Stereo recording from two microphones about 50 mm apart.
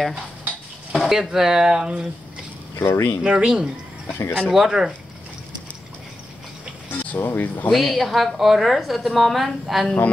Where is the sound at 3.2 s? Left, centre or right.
Centre.